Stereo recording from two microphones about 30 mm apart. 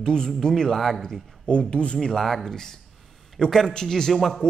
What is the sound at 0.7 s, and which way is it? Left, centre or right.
Speech, centre.